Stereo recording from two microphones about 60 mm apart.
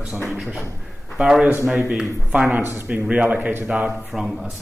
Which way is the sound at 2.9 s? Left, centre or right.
Right.